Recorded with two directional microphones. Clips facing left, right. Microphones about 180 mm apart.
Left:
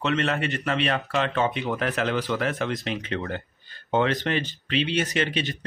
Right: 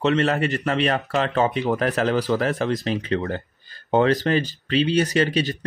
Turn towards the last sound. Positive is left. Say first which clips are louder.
# right 5 dB
turn(degrees=-40)  # may be behind; listen again after turning